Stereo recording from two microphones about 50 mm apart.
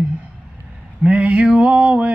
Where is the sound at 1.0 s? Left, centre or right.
Right.